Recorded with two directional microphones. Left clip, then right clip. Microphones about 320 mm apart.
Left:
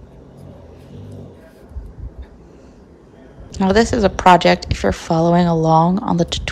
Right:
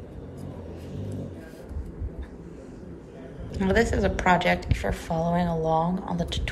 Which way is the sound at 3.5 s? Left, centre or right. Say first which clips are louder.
Left 8 dB; centre.